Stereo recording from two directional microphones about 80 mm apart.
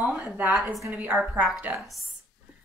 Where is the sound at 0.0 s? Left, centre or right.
Centre.